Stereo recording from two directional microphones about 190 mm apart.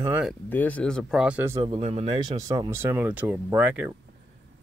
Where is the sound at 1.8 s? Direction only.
35° right (ahead or behind).